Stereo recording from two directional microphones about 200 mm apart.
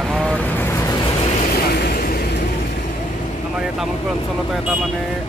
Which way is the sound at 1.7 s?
45° left (ahead or behind).